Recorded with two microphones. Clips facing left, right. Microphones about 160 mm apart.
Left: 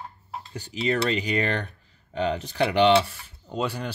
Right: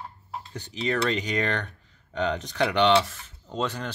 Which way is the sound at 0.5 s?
10° left (ahead or behind).